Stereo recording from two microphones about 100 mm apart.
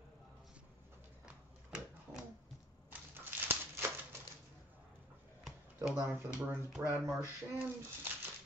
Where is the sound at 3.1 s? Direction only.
20° right (ahead or behind).